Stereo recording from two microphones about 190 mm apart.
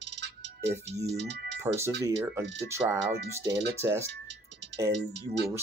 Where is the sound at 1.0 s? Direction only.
60° right (ahead or behind).